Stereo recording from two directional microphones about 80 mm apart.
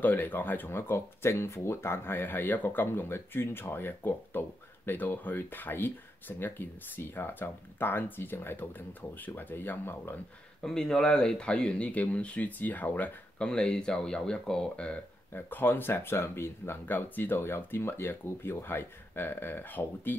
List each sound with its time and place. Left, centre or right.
0.0 s speech: left
10.6 s speech: centre
13.5 s speech: centre
15.3 s speech: left